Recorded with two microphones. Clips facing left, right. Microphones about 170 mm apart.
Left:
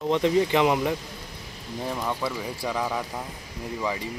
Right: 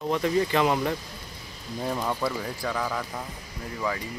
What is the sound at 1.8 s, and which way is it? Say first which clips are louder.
Speech: right 1 dB; centre (ahead or behind).